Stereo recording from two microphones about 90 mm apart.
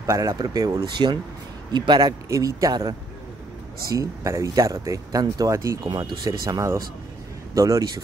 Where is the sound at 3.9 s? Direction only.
35° right (ahead or behind).